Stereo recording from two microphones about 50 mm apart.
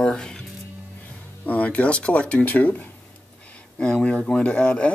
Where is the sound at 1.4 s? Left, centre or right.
Left.